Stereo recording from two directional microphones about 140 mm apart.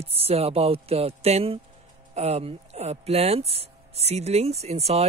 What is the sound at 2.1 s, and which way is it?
Speech, 50° right (ahead or behind).